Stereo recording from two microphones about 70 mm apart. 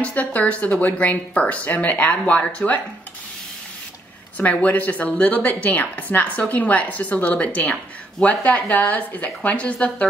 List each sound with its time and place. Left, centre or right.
0.0 s speech: left
4.4 s speech: left